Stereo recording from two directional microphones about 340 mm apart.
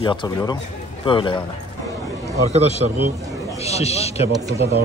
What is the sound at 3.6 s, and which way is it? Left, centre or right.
Speech, centre.